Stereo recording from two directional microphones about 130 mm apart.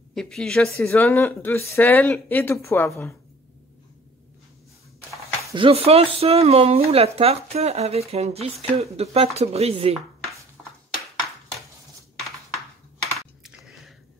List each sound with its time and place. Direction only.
0.1 s a woman's voice: 5° left (ahead or behind)
0.8 s speech: 15° left (ahead or behind)
5.5 s speech: 45° right (ahead or behind)
13.4 s chewing: 5° right (ahead or behind)